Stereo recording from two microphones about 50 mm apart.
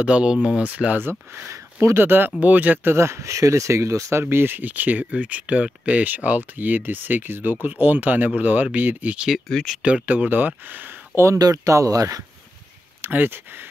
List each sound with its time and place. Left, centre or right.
0.0 s speech: right
0.7 s speech: right
0.9 s speech: right
1.5 s a sound: right
2.0 s speech: right
2.4 s speech: right
2.8 s speech: right
4.2 s speech: right
9.8 s speech: centre
10.0 s speech: right
11.1 s speech: right
13.0 s speech: right